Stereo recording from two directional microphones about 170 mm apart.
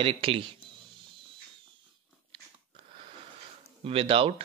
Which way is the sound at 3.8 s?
35° right (ahead or behind).